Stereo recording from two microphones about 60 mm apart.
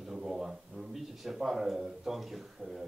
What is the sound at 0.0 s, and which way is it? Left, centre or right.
A man's voice, centre.